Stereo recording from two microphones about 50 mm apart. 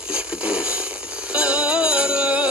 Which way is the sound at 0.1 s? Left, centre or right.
Centre.